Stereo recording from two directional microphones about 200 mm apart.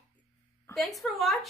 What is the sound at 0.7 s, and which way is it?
Speech, centre (ahead or behind).